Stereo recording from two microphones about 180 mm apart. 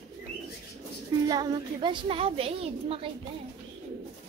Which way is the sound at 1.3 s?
20° right (ahead or behind).